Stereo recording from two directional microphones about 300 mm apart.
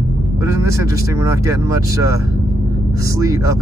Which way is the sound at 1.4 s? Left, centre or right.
Centre.